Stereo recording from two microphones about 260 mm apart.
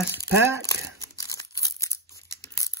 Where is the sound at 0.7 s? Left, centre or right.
Centre.